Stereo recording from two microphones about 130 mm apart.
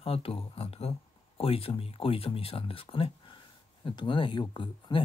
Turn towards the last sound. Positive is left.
turn(degrees=40)  # may be behind; listen again after turning